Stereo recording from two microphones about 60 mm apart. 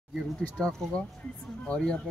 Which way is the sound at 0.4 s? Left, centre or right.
Centre.